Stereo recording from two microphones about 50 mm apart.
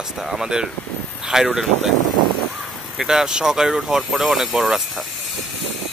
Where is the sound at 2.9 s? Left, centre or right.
Centre.